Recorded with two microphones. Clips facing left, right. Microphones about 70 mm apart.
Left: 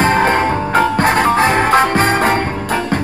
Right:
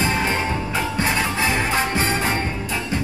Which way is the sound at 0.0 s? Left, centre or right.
Left.